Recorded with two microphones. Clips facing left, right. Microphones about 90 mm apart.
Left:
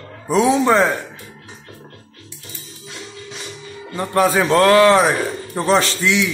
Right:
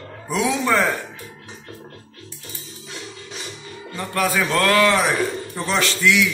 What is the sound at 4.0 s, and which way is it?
A man's voice, 30° left (ahead or behind).